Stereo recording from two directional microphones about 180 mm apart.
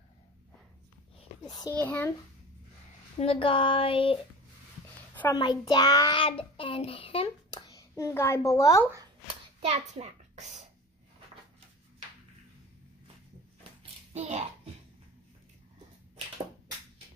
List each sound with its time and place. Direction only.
1.8 s a child's voice: 10° left (ahead or behind)
3.2 s speech: 30° left (ahead or behind)
5.3 s a child's voice: 25° left (ahead or behind)
7.7 s a child's voice: 15° left (ahead or behind)
9.6 s a child's voice: 40° right (ahead or behind)
14.1 s a child's voice: 40° right (ahead or behind)